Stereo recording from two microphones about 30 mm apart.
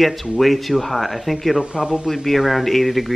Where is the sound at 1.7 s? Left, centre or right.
Right.